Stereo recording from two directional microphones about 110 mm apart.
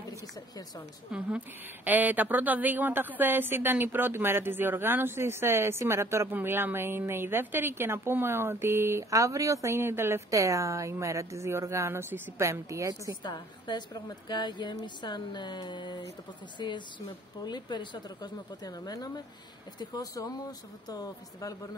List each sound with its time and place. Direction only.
0.1 s speech: 30° left (ahead or behind)
1.1 s a woman's voice: 5° right (ahead or behind); by 13.1 s 30° right (ahead or behind)
13.2 s a woman's voice: 40° left (ahead or behind)